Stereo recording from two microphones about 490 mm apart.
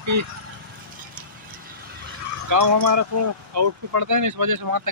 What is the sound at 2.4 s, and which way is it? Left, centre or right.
Speech, right.